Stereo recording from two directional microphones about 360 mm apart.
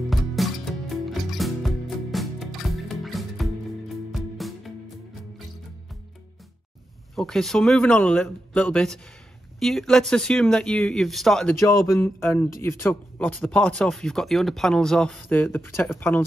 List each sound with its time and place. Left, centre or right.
0.1 s music: centre
7.2 s speech: centre